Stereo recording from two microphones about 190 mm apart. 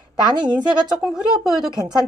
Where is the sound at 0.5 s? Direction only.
5° right (ahead or behind).